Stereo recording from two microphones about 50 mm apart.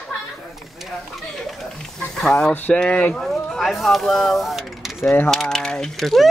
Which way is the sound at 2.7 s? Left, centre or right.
Left.